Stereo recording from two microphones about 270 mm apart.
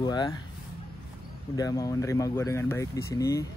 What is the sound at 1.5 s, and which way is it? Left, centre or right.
Speech, centre.